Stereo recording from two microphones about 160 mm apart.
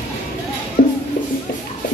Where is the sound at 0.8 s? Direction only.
75° left (ahead or behind).